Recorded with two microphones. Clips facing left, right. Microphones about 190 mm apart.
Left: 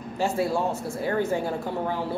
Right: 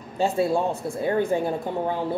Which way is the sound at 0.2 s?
20° right (ahead or behind).